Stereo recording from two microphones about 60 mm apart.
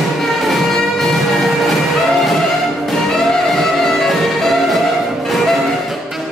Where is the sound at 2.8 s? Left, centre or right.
Centre.